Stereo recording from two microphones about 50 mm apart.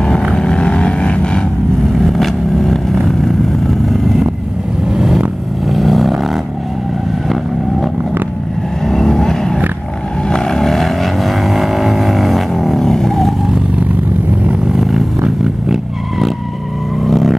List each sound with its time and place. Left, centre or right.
0.3 s vehicle: centre
2.0 s vehicle: centre
4.9 s vehicle: centre
8.8 s vehicle: centre
14.8 s vehicle: centre